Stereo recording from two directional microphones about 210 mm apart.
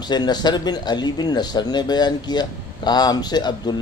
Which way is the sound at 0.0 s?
20° left (ahead or behind).